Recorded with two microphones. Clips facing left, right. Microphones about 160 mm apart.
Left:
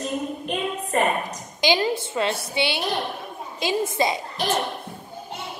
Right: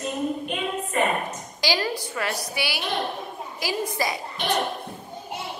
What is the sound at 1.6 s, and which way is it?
A woman's voice, 20° left (ahead or behind).